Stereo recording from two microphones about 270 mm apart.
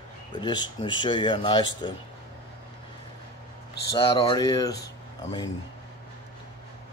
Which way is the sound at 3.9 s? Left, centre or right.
Centre.